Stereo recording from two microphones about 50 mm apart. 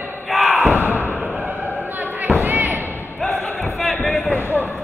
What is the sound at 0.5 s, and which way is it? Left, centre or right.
Slam, right.